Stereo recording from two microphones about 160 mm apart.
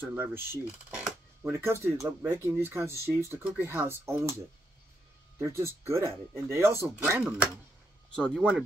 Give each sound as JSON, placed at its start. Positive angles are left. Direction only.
{"t": 0.0, "sound": "speech", "side_deg": -10}
{"t": 5.4, "sound": "speech", "side_deg": -15}
{"t": 8.4, "sound": "speech", "side_deg": -10}